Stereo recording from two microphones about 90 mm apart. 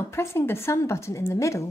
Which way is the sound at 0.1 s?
30° left (ahead or behind).